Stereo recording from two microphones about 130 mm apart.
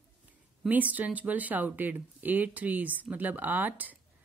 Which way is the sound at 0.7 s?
10° right (ahead or behind).